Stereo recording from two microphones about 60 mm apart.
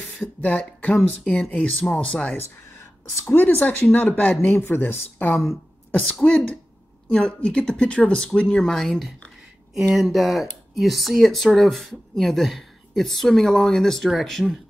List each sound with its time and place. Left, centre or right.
0.4 s speech: left
3.3 s speech: left
5.9 s throat clearing: left
7.1 s speech: centre
9.9 s speech: centre